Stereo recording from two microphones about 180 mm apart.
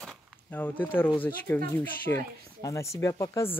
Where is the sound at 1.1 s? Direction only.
10° left (ahead or behind).